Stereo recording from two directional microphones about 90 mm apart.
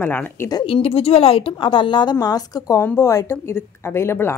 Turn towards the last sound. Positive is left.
turn(degrees=30)  # may be behind; listen again after turning